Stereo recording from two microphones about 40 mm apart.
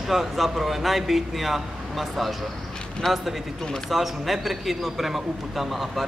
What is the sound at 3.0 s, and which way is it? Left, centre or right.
Speech, centre.